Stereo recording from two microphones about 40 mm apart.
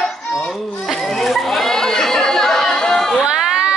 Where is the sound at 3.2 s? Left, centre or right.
Centre.